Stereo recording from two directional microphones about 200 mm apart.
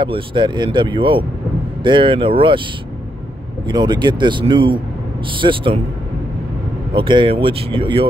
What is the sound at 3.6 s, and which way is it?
Speech, 20° right (ahead or behind).